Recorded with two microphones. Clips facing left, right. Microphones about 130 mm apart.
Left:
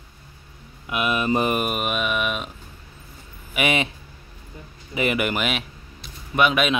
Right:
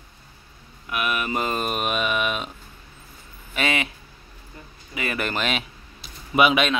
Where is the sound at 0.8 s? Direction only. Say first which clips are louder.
Left 4 dB; 20° left (ahead or behind); by 2.5 s centre (ahead or behind).